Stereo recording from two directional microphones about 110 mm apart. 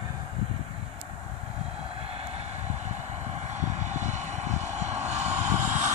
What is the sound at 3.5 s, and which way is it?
Vehicle, 90° right.